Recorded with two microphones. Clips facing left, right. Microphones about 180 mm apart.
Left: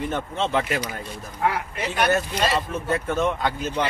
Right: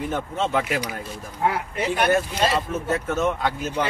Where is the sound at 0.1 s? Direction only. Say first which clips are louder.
Right 1 dB; 10° right (ahead or behind).